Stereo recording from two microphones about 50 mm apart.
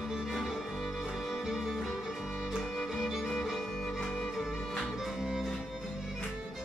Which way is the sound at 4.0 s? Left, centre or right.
Centre.